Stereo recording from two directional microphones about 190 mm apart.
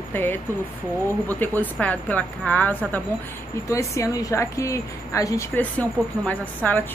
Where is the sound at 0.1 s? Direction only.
10° left (ahead or behind).